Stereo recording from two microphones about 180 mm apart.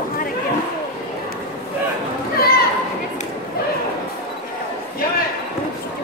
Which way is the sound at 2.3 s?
60° left (ahead or behind).